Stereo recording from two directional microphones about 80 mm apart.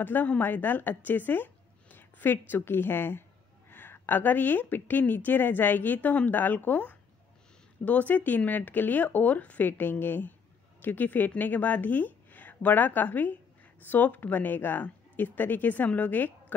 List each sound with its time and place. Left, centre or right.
0.0 s a woman's voice: left